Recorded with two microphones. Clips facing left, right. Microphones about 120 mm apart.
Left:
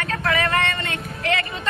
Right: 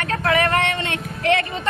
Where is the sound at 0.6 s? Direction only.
65° right (ahead or behind).